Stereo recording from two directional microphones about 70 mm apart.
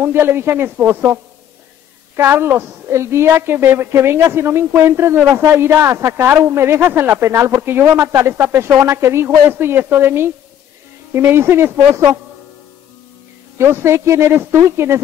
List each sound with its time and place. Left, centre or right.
0.0 s a woman's voice: right
7.6 s a woman's voice: right
13.6 s a woman's voice: right